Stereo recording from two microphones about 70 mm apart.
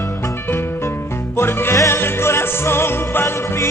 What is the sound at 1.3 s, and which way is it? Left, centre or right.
Music, left.